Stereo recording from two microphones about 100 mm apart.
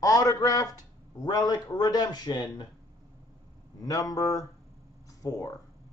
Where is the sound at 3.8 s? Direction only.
35° left (ahead or behind).